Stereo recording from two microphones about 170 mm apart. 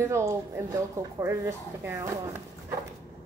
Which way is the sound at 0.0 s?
15° right (ahead or behind).